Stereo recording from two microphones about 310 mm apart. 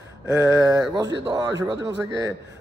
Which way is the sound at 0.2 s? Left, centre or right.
Centre.